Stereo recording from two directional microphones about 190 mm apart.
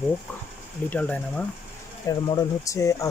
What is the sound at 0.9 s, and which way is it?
Speech, 5° left (ahead or behind).